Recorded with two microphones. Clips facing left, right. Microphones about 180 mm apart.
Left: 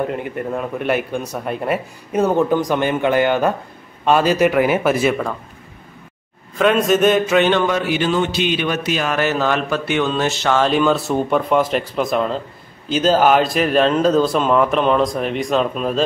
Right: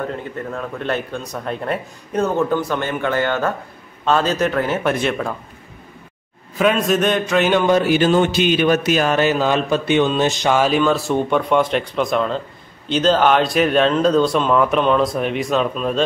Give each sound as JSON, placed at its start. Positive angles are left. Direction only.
{"t": 0.0, "sound": "speech", "side_deg": 15}
{"t": 6.6, "sound": "speech", "side_deg": 0}
{"t": 7.7, "sound": "music", "side_deg": -40}
{"t": 9.1, "sound": "a sound", "side_deg": -15}
{"t": 10.7, "sound": "speech", "side_deg": 0}